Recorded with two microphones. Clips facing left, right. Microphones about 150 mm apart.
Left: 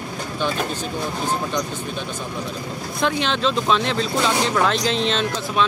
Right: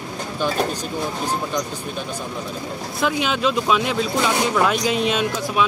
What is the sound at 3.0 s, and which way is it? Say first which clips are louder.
Speech: even; 5° right (ahead or behind).